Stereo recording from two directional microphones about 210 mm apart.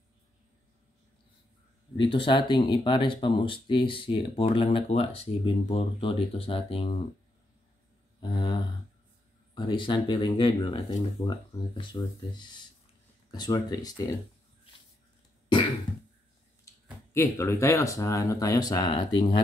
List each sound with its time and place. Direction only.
2.0 s speech: 25° left (ahead or behind)
8.2 s a sound: 20° left (ahead or behind)
9.6 s speech: 25° left (ahead or behind)
17.1 s speech: 15° left (ahead or behind)